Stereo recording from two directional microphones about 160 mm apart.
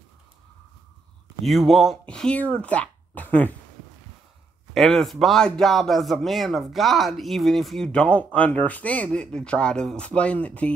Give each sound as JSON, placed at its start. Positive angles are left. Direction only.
{"t": 1.4, "sound": "speech", "side_deg": 0}
{"t": 4.7, "sound": "speech", "side_deg": 0}